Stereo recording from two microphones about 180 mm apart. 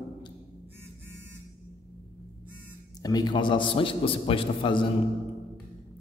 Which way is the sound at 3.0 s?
20° left (ahead or behind).